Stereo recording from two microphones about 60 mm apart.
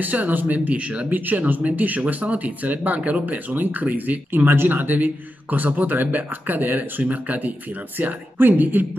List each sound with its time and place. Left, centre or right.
0.0 s a woman's voice: right